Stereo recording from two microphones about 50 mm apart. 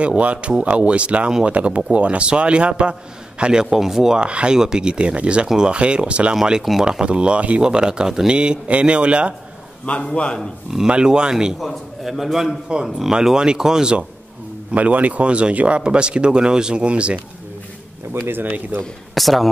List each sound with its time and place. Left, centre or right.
0.0 s speech: right; by 4.2 s centre
4.2 s speech: right
8.4 s speech: right
9.8 s a man's voice: left
10.9 s speech: centre
11.6 s a man's voice: centre
14.7 s speech: right
18.1 s speech: right
18.4 s speech: right
19.1 s a man's voice: centre